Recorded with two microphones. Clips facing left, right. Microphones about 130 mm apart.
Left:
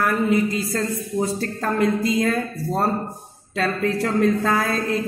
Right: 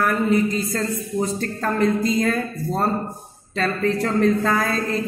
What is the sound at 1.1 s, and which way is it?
Speech, 5° left (ahead or behind).